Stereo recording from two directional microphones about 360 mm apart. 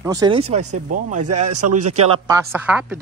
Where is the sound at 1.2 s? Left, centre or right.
Right.